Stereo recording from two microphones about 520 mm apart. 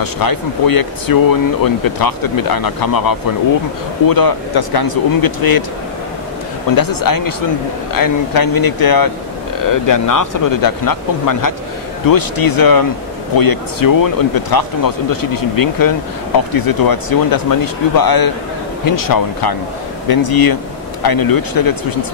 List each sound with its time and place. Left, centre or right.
0.0 s speech: left
6.7 s speech: left